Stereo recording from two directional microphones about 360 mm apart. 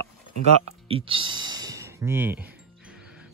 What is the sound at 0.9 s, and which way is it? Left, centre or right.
Speech, centre.